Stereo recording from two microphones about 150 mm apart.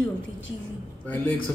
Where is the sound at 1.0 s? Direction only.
10° left (ahead or behind).